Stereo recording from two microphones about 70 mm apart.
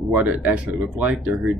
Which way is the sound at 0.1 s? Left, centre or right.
Right.